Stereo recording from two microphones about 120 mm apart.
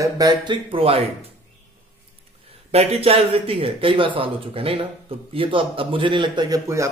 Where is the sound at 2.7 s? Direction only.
60° right (ahead or behind); by 6.6 s 40° right (ahead or behind).